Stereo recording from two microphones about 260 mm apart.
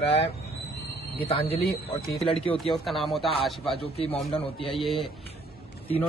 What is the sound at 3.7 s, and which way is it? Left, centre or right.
Speech, left.